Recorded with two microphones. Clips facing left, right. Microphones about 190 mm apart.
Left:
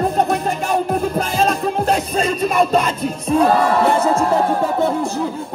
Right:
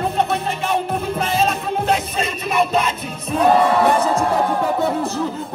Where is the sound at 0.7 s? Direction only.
35° left (ahead or behind).